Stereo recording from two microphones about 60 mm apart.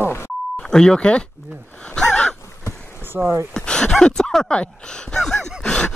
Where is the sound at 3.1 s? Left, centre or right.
Centre.